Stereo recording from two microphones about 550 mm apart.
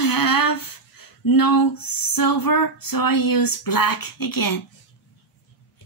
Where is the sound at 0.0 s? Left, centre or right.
Left.